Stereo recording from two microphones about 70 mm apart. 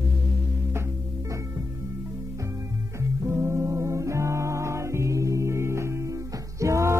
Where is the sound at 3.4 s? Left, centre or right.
Right.